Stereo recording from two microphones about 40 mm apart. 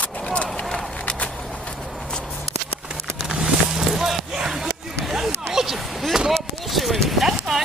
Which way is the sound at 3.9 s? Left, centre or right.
Centre.